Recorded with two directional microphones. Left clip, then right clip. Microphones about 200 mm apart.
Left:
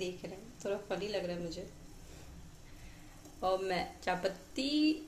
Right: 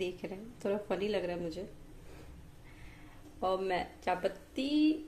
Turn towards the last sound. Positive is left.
turn(degrees=-5)  # may be behind; listen again after turning